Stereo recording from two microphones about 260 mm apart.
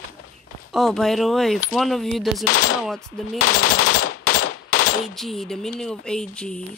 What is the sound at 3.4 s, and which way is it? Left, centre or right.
Machine gun, left.